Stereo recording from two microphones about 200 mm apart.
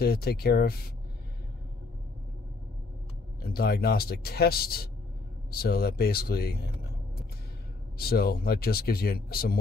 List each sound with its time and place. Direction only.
0.0 s speech: 50° left (ahead or behind)
3.4 s speech: 50° left (ahead or behind)
8.0 s speech: 50° left (ahead or behind)